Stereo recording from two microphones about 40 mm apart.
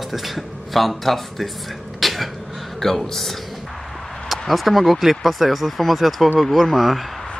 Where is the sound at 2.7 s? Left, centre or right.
Centre.